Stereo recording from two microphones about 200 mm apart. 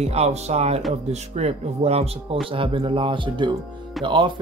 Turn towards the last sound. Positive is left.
turn(degrees=0)  # may be behind; listen again after turning